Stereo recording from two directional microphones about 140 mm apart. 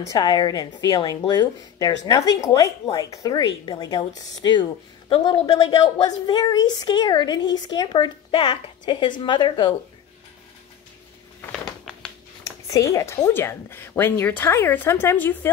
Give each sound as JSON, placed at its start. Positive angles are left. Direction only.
{"t": 0.1, "sound": "speech", "side_deg": 30}
{"t": 5.1, "sound": "a woman's voice", "side_deg": 40}
{"t": 6.0, "sound": "a woman's voice", "side_deg": 30}
{"t": 12.4, "sound": "speech", "side_deg": 25}